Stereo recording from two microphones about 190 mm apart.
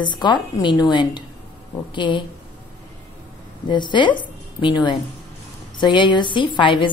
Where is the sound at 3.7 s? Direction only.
25° left (ahead or behind).